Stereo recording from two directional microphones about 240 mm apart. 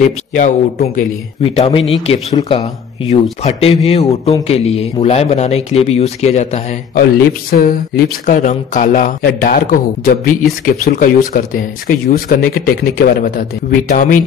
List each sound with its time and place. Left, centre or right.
0.0 s speech: left
7.5 s speech: left